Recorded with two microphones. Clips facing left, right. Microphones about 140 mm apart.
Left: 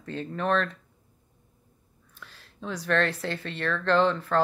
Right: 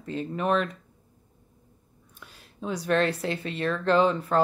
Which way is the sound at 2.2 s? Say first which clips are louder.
Right 3 dB; 15° right (ahead or behind).